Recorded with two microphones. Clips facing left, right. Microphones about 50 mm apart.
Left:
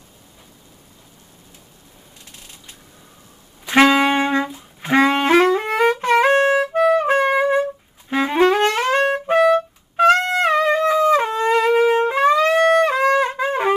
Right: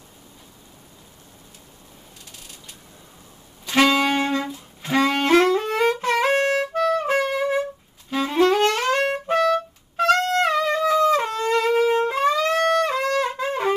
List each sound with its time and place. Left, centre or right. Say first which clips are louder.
3.6 s saxophone: left 4 dB; left
8.1 s music: left 3 dB; left
8.5 s music: left 3 dB; centre